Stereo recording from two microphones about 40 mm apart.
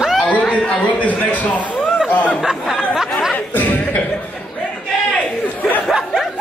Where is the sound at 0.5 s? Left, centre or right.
Left.